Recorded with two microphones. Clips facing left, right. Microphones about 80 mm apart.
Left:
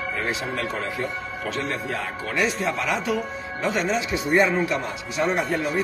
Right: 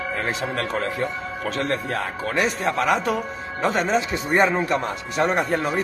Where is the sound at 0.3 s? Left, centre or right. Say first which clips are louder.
Right 2 dB; right.